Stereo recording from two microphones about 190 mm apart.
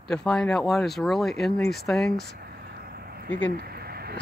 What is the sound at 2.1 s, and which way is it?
Speech, 60° left (ahead or behind).